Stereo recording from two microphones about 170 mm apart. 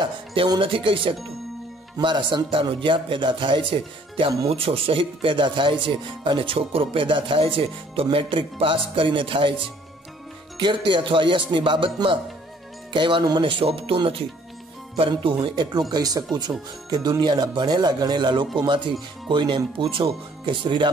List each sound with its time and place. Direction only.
0.0 s speech: 30° right (ahead or behind)
10.6 s speech: 30° right (ahead or behind)